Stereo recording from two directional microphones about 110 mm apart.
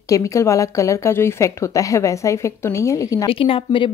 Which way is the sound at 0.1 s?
30° left (ahead or behind).